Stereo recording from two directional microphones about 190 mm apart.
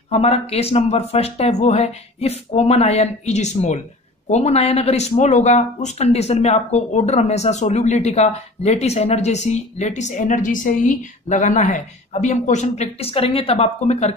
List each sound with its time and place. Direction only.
0.1 s speech: 35° left (ahead or behind)